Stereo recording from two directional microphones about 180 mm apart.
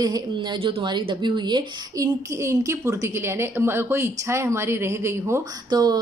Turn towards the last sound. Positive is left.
turn(degrees=-20)  # may be behind; listen again after turning